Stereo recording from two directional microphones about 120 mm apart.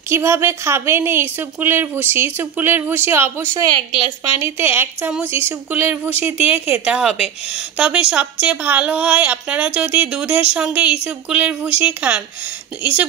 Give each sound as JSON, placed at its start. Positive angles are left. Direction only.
{"t": 0.1, "sound": "a woman's voice", "side_deg": -20}